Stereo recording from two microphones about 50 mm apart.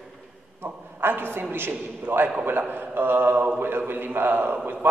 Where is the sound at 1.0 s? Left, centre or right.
Right.